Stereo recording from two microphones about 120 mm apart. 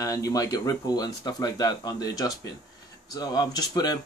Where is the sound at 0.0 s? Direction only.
30° left (ahead or behind).